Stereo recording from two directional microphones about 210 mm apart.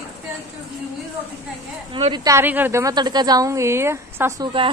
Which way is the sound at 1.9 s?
20° right (ahead or behind).